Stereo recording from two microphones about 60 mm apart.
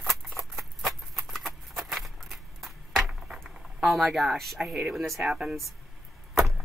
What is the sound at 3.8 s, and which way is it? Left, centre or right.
Speech, centre.